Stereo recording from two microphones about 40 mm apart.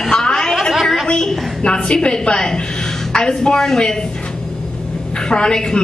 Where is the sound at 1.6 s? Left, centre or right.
Left.